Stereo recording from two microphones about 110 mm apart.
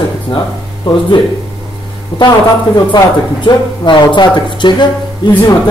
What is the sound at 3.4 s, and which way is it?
A woman's voice, 45° left (ahead or behind).